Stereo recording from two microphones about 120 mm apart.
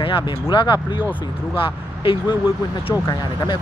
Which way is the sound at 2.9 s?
30° left (ahead or behind).